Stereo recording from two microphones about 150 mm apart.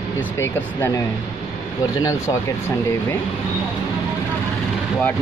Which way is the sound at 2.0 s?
15° left (ahead or behind).